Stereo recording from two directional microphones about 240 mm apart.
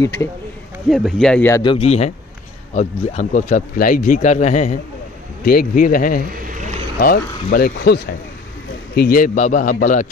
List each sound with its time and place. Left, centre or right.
0.8 s speech: centre
1.6 s a man's voice: left
6.3 s vehicle: right
7.0 s a man's voice: left